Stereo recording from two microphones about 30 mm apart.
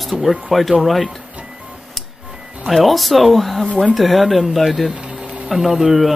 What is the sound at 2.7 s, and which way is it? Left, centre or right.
Speech, centre.